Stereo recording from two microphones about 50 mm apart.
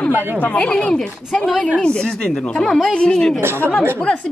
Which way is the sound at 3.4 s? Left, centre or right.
Right.